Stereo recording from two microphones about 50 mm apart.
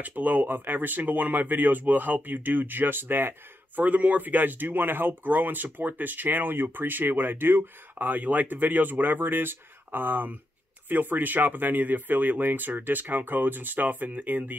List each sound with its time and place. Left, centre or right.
0.0 s speech: right